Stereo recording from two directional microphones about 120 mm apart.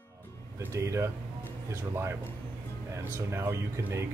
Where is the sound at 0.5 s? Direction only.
25° right (ahead or behind).